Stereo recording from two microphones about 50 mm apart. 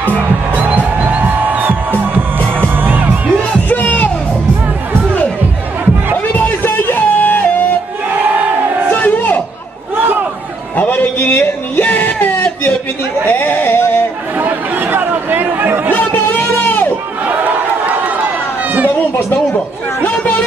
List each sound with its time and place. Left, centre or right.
0.0 s music: right
3.6 s music: left
6.3 s music: left
8.9 s a sound: left
9.9 s chatter: right
10.8 s a sound: left
14.4 s chatter: right
16.2 s a sound: left
17.3 s run: right
18.9 s chatter: left